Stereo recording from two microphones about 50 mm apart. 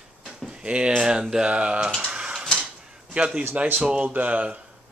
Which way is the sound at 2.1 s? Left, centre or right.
Centre.